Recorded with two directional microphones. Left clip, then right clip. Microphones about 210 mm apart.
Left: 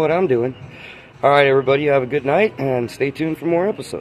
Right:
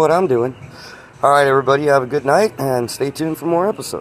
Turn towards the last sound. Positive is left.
turn(degrees=0)  # may be behind; listen again after turning